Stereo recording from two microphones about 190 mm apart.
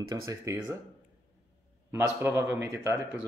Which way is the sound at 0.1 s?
15° right (ahead or behind).